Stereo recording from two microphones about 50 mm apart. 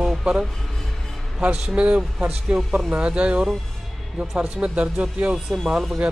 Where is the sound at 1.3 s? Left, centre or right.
Centre.